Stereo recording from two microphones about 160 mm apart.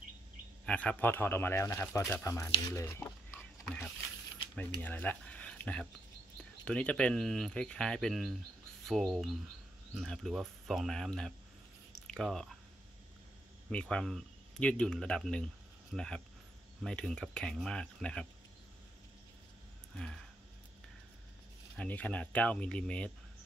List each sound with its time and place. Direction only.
0.7 s speech: 5° left (ahead or behind)
3.6 s a sound: 5° left (ahead or behind)
4.8 s speech: 10° left (ahead or behind)
13.7 s speech: 5° left (ahead or behind)
21.7 s speech: 10° left (ahead or behind)